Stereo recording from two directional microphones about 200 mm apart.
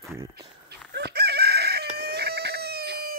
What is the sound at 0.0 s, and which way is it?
Speech, 15° right (ahead or behind).